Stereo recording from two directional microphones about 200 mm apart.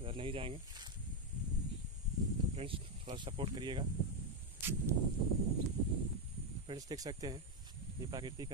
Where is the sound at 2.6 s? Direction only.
30° right (ahead or behind).